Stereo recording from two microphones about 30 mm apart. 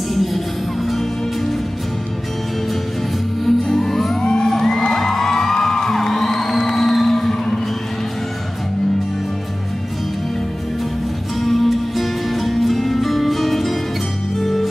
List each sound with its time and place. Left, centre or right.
0.1 s music: centre
3.4 s music: centre
4.2 s music: left
4.5 s music: centre
11.4 s music: centre